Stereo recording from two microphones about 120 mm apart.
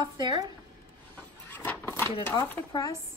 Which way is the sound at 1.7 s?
20° left (ahead or behind).